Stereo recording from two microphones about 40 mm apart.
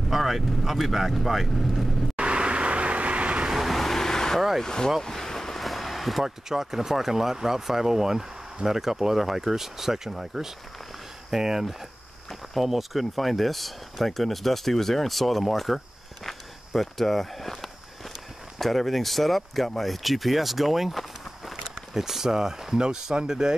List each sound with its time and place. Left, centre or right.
0.1 s speech: centre
2.1 s vehicle: right
3.5 s vehicle: centre
4.6 s speech: centre
5.0 s a sound: centre
6.2 s speech: centre
16.3 s walk: centre
18.6 s speech: centre